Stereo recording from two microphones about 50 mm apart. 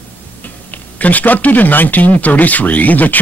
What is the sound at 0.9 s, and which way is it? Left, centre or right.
Speech, left.